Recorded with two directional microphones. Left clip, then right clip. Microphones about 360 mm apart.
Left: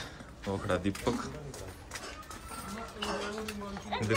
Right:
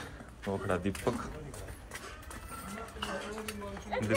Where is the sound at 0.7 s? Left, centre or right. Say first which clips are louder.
Left 2 dB; centre.